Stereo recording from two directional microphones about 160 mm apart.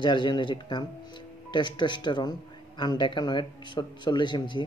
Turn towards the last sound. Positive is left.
turn(degrees=30)  # may be behind; listen again after turning